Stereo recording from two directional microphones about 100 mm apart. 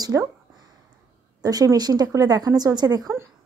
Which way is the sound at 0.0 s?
35° right (ahead or behind).